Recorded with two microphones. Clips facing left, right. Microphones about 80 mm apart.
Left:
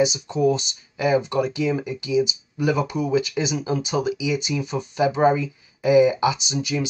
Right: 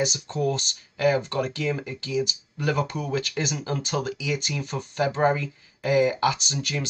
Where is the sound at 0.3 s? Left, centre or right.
Centre.